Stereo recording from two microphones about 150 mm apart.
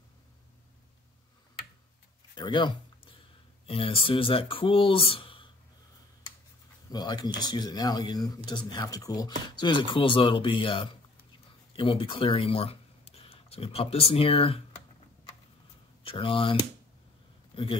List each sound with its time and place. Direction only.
2.3 s speech: 30° left (ahead or behind)
6.9 s speech: 30° left (ahead or behind)
16.0 s speech: 35° left (ahead or behind)